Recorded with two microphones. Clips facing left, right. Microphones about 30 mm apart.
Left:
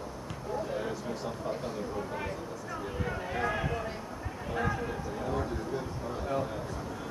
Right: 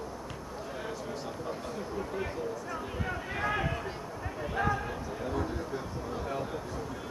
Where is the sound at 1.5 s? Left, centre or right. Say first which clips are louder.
Left 3 dB; centre.